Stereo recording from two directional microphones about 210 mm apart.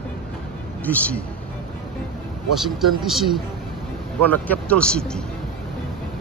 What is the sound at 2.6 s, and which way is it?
Speech, centre (ahead or behind).